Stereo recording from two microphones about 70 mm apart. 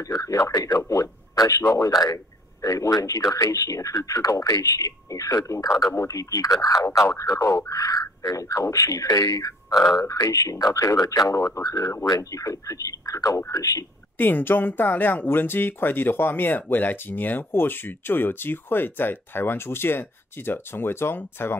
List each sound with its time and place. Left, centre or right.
0.0 s speech: left
7.1 s speech: left
9.8 s speech: left
11.6 s speech: left
14.1 s speech: left